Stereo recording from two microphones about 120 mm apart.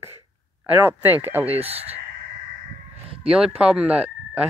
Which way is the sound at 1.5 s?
55° right (ahead or behind).